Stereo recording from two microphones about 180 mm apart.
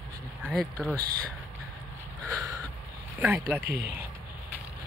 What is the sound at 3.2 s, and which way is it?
Speech, 10° right (ahead or behind).